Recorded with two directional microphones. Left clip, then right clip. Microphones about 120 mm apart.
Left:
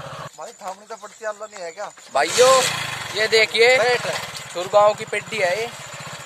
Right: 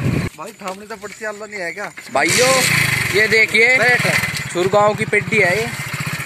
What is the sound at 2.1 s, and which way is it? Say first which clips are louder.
Speech: even; centre (ahead or behind).